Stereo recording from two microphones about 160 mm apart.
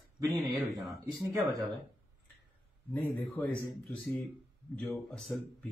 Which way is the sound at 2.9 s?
10° left (ahead or behind).